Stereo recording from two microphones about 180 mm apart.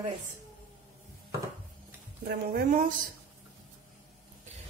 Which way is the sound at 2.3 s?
55° right (ahead or behind).